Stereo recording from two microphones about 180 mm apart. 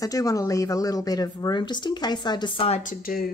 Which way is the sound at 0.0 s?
20° left (ahead or behind).